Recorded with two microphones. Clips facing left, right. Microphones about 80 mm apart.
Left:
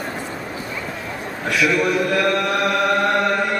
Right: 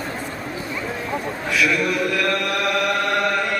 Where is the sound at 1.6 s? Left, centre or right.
Centre.